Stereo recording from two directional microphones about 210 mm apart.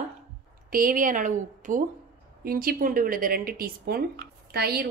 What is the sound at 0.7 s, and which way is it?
A woman's voice, 40° right (ahead or behind).